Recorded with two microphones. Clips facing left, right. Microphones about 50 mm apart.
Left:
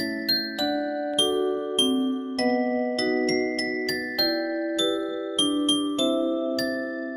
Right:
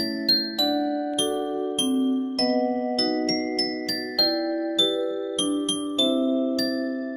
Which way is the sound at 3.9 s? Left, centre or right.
Left.